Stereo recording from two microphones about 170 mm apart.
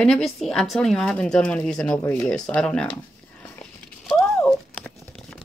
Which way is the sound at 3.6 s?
5° left (ahead or behind).